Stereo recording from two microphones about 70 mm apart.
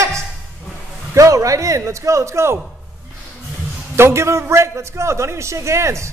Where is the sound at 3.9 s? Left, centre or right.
Right.